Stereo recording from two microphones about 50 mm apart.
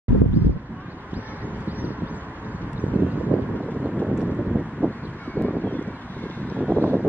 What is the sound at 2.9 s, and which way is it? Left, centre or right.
Wind noise, right.